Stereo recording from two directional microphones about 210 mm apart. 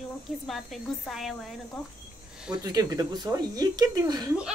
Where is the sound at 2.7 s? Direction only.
15° right (ahead or behind).